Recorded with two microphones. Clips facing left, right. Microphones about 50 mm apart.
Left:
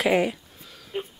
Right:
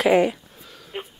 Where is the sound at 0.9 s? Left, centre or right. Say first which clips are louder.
Left 2 dB; right.